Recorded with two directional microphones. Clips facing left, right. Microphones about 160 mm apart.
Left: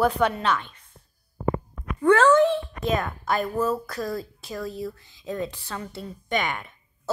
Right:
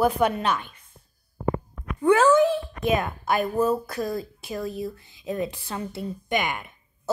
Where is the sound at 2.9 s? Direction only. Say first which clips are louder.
Right 1 dB; 20° right (ahead or behind).